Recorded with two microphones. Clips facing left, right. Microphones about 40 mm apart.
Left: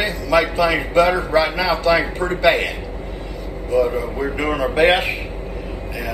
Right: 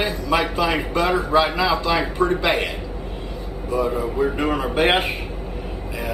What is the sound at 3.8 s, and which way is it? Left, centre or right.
Speech, left.